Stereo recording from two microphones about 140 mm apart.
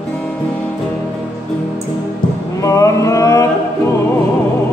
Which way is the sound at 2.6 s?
25° left (ahead or behind).